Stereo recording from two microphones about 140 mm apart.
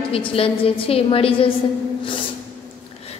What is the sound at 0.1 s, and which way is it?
A woman's voice, 40° left (ahead or behind).